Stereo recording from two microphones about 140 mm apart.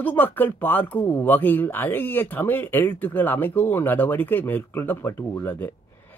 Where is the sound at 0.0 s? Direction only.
15° left (ahead or behind).